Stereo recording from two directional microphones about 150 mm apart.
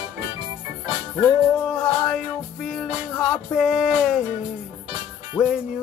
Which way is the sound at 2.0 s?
Centre (ahead or behind).